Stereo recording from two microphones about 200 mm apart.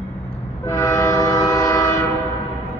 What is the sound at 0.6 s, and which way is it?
Train, 15° left (ahead or behind).